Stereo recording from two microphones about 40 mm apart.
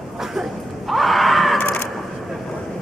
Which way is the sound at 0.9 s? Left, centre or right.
Centre.